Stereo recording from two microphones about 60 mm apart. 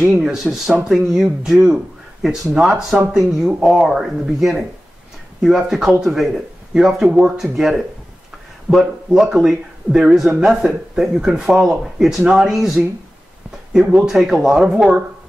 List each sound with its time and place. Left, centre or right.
0.2 s speech: centre